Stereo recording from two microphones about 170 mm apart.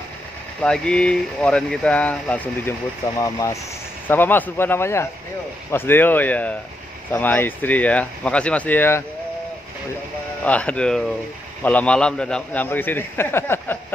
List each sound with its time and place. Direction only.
0.6 s a man's voice: 5° left (ahead or behind)
10.4 s a man's voice: 5° left (ahead or behind)